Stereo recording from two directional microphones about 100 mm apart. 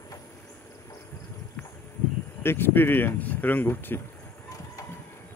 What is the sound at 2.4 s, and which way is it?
Speech, 20° left (ahead or behind).